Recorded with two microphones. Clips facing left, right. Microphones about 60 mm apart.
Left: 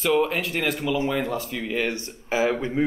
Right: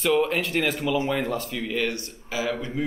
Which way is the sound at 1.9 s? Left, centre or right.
Left.